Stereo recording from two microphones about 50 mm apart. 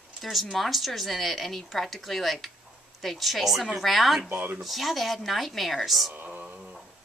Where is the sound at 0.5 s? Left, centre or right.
Centre.